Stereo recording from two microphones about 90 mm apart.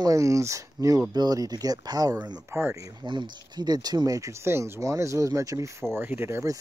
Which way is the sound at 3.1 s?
55° right (ahead or behind).